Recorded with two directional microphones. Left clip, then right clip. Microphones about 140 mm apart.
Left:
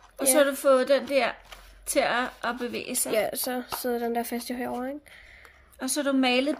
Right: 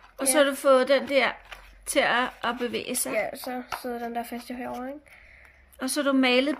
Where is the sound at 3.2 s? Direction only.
90° left.